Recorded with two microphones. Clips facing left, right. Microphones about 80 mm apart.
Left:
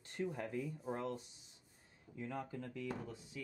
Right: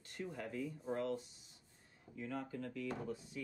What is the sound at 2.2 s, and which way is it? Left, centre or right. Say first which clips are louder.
Speech: right 1 dB; left.